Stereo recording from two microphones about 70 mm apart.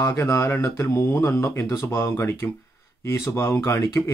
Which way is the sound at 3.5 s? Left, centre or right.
Left.